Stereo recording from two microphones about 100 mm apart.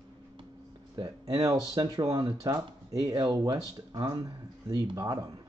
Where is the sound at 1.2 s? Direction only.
40° right (ahead or behind).